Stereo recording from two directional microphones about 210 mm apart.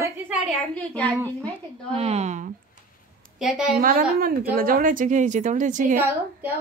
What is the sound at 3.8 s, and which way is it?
A woman's voice, 45° right (ahead or behind).